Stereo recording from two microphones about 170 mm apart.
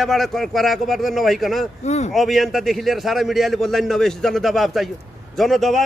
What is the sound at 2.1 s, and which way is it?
A man's voice, centre (ahead or behind).